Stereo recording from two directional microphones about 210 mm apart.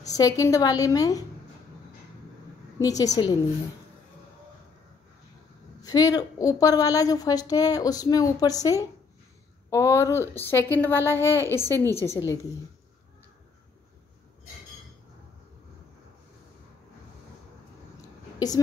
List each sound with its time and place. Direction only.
0.1 s a woman's voice: 15° left (ahead or behind)
2.8 s a woman's voice: 15° left (ahead or behind)
5.8 s a woman's voice: 15° left (ahead or behind)